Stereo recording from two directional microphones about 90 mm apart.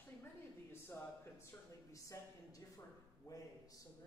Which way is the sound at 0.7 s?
25° left (ahead or behind).